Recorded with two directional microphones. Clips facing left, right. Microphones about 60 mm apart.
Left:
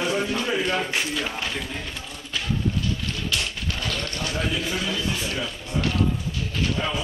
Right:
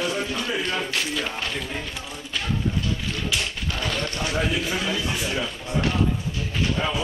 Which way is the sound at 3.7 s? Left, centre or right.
Right.